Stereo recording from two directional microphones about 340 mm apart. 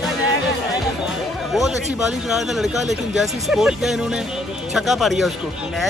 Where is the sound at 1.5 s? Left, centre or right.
Centre.